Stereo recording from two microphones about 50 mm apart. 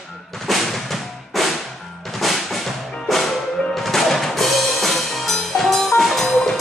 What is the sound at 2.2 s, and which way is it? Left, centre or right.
Music, centre.